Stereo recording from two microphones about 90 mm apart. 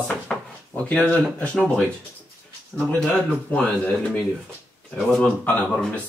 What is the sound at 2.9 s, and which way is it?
Speech, 5° left (ahead or behind).